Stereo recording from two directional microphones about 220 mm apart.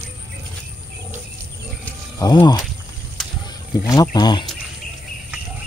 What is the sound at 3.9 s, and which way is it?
Speech, 20° left (ahead or behind).